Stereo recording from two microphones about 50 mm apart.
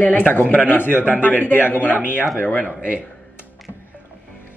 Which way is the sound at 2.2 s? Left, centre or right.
Centre.